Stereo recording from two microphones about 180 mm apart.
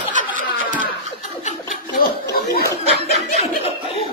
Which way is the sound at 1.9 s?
55° left (ahead or behind).